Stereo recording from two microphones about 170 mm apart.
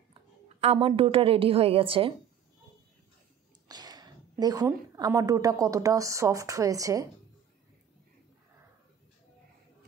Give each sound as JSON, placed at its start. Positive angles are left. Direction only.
{"t": 0.1, "sound": "a woman's voice", "side_deg": -35}
{"t": 3.6, "sound": "a woman's voice", "side_deg": -25}